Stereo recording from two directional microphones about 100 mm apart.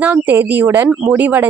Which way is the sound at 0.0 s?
20° right (ahead or behind).